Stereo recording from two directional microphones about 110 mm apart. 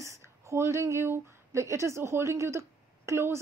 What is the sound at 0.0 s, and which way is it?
A woman's voice, 25° right (ahead or behind).